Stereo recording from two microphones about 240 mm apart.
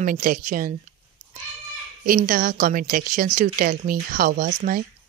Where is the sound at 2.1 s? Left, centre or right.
Right.